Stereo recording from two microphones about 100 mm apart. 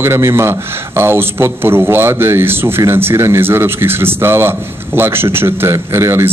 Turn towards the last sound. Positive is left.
turn(degrees=-30)  # may be behind; listen again after turning